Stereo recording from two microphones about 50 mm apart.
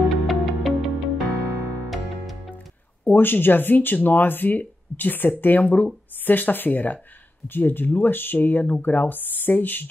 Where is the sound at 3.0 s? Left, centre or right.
Left.